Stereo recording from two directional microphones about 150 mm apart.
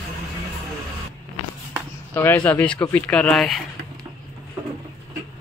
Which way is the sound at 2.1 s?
15° left (ahead or behind).